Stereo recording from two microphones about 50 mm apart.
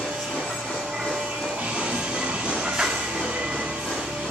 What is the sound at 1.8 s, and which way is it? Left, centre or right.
Music, centre.